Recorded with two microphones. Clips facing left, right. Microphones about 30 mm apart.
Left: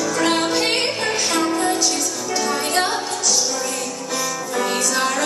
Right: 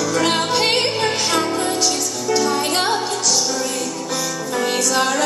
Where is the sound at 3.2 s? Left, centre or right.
Right.